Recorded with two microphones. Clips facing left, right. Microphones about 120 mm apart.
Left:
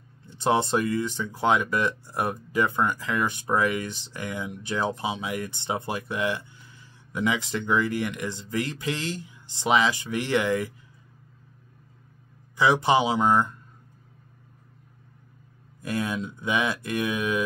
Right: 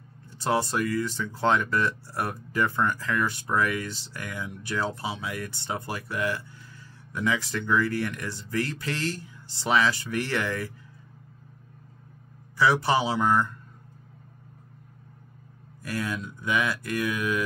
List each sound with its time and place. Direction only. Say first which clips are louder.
0.3 s speech: left 3 dB; 20° left (ahead or behind)
12.5 s speech: left 2 dB; 20° left (ahead or behind)
15.8 s speech: left 3 dB; 20° left (ahead or behind)